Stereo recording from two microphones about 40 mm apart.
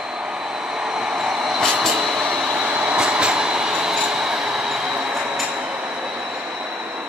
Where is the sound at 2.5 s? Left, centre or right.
Right.